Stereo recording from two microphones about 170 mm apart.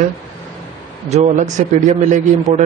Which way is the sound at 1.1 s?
45° right (ahead or behind).